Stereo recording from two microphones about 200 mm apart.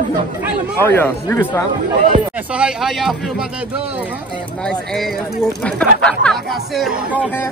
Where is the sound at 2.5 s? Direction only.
5° right (ahead or behind).